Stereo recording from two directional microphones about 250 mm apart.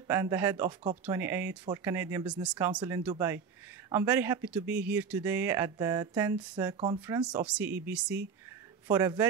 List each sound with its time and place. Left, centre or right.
0.1 s speech: centre
7.2 s speech: centre